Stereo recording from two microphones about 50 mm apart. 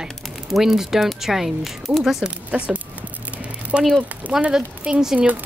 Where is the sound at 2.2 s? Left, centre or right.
Right.